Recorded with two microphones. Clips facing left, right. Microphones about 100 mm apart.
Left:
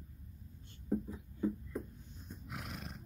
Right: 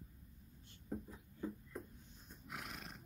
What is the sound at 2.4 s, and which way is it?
Roar, 10° left (ahead or behind).